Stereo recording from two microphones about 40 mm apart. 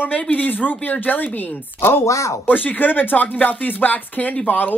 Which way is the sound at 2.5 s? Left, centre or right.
Left.